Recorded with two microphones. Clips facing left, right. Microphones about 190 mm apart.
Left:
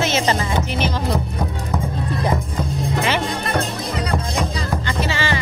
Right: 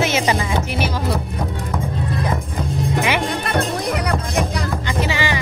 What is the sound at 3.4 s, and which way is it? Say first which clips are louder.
Music: right 2 dB; 65° right (ahead or behind).